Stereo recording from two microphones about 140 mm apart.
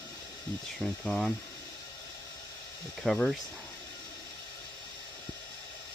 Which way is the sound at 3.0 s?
5° left (ahead or behind).